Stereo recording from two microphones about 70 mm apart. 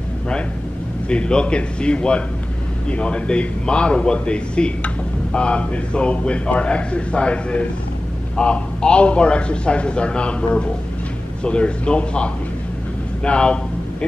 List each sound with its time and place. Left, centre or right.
1.0 s a man's voice: centre